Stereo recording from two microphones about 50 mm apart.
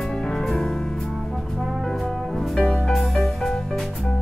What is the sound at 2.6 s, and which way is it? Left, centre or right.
Music, centre.